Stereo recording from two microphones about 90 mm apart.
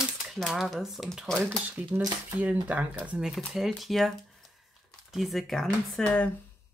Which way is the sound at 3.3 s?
Centre (ahead or behind).